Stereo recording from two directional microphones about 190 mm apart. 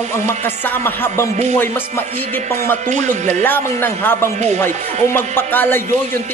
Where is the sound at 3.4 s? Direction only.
10° left (ahead or behind).